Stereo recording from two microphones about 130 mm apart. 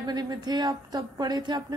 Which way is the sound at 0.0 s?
30° right (ahead or behind).